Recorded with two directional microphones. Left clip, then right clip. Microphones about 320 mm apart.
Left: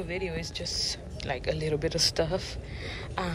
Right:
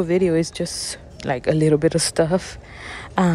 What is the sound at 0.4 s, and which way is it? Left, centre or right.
Speech, right.